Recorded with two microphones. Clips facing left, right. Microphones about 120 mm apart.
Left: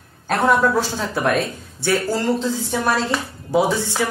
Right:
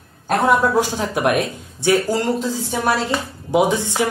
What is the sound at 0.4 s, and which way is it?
Speech, 15° right (ahead or behind).